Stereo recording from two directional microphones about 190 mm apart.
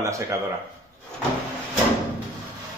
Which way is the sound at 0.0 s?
15° right (ahead or behind).